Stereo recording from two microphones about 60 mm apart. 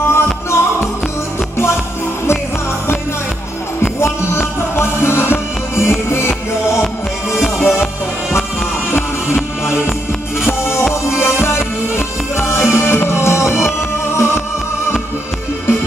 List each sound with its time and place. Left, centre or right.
0.1 s music: left
4.0 s music: left
7.4 s music: centre
8.9 s music: left
11.1 s music: left